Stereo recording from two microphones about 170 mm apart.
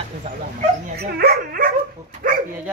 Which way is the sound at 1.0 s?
65° right (ahead or behind).